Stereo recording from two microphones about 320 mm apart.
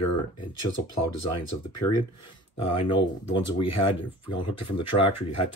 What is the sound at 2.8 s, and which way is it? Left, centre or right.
Speech, centre.